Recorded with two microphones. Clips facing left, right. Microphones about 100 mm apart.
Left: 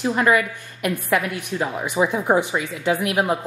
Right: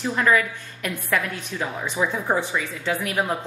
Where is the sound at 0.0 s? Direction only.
15° left (ahead or behind).